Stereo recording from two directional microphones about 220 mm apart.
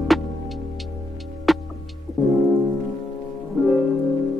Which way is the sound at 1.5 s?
Centre (ahead or behind).